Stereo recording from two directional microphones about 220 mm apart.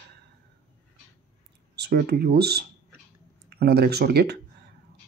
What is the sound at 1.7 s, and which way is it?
Speech, 45° right (ahead or behind).